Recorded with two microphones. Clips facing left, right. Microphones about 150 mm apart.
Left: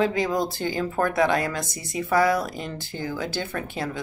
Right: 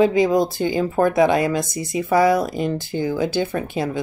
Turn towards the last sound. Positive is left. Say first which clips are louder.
# right 6 dB
turn(degrees=-15)  # may be behind; listen again after turning